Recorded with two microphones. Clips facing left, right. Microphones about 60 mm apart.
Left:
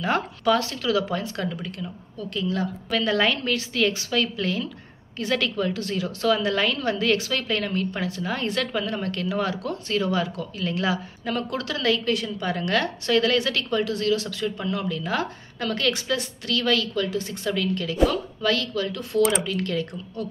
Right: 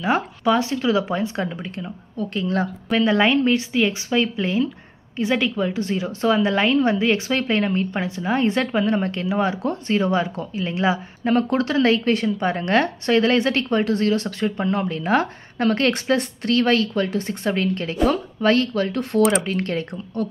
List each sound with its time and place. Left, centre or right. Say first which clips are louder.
0.0 s a woman's voice: right 3 dB; centre; by 3.0 s right
3.0 s a woman's voice: right 6 dB; right